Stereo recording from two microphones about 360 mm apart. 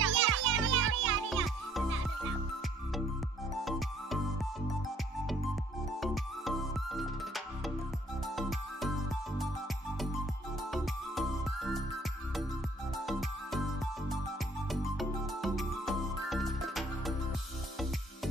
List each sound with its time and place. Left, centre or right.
0.0 s music: right
1.3 s music: centre
5.9 s music: centre
10.7 s music: centre
12.9 s music: centre
14.7 s music: centre